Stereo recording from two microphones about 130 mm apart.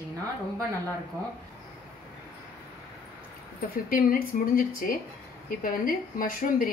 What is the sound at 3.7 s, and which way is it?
A woman's voice, 90° left.